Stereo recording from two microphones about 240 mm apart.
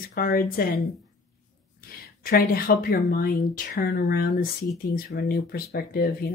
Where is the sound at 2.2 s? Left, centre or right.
Left.